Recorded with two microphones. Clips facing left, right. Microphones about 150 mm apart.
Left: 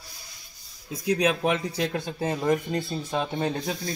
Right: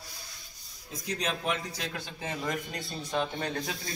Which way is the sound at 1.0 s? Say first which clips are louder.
Left 9 dB; 60° left (ahead or behind).